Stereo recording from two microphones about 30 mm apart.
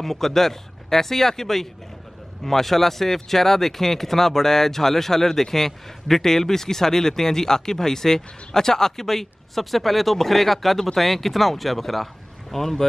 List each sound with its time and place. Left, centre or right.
0.0 s speech: centre